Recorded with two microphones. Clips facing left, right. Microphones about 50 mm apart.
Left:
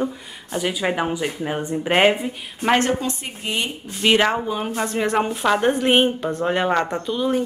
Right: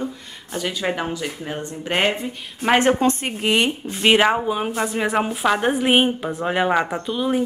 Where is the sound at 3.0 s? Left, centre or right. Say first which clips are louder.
Right 7 dB; right.